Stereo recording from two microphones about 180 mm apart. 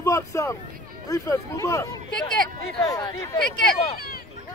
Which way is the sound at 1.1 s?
15° left (ahead or behind).